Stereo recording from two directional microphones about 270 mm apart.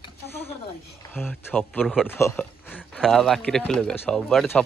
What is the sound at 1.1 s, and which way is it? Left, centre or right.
Speech, centre.